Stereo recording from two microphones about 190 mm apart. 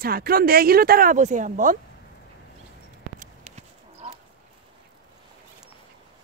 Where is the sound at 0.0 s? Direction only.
50° right (ahead or behind).